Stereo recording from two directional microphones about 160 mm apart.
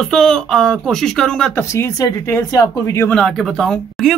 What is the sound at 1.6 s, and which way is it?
Speech, 20° left (ahead or behind).